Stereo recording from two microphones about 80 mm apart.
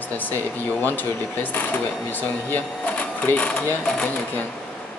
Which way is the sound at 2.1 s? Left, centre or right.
Left.